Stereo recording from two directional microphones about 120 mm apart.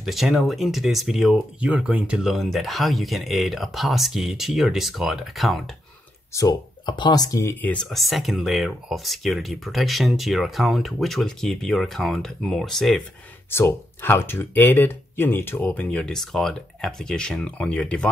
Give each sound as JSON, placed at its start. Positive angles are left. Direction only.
{"t": 0.0, "sound": "speech", "side_deg": 0}
{"t": 1.7, "sound": "speech", "side_deg": -10}
{"t": 6.3, "sound": "speech", "side_deg": 35}
{"t": 7.6, "sound": "speech", "side_deg": 5}
{"t": 13.5, "sound": "speech", "side_deg": 20}